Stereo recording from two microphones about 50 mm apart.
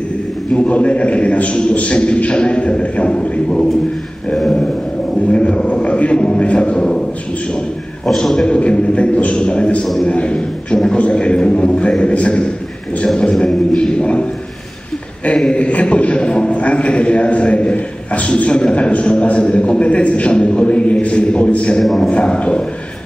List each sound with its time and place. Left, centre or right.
0.7 s a man's voice: left
5.3 s a man's voice: left
8.2 s a man's voice: centre
8.5 s a man's voice: left
15.3 s a man's voice: left
21.8 s a man's voice: centre
22.1 s a man's voice: left